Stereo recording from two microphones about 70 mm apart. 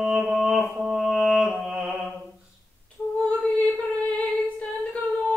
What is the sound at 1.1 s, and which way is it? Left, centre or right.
Music, centre.